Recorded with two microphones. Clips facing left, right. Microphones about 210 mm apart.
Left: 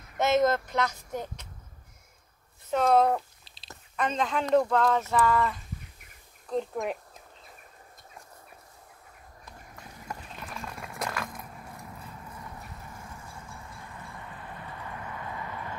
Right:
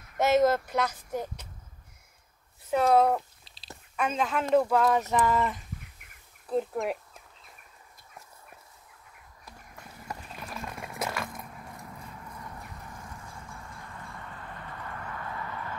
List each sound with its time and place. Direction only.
0.2 s speech: 10° right (ahead or behind)
2.7 s speech: 5° right (ahead or behind)
6.5 s speech: 5° right (ahead or behind)
10.0 s a sound: 5° right (ahead or behind)
15.0 s clip-clop: 15° left (ahead or behind)